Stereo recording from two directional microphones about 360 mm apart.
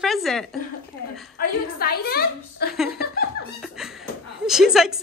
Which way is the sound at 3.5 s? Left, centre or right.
Centre.